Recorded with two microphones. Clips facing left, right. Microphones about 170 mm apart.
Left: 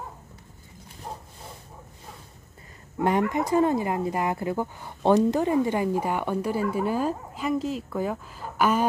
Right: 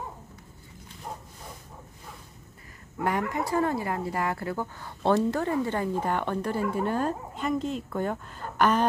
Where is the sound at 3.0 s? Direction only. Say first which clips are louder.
Left 4 dB; 20° left (ahead or behind).